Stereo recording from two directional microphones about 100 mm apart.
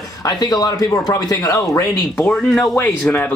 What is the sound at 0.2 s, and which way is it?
Speech, 40° left (ahead or behind).